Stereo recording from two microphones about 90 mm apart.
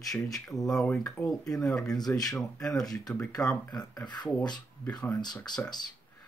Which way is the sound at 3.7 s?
50° left (ahead or behind).